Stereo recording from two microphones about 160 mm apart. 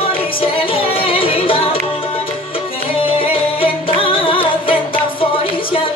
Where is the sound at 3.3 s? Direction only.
35° left (ahead or behind).